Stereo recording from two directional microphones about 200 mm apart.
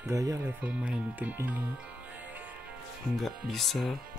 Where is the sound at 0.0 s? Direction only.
15° right (ahead or behind).